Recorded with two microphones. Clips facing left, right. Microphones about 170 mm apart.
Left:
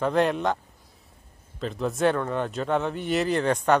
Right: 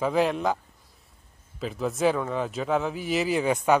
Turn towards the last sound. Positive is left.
turn(degrees=-5)  # may be behind; listen again after turning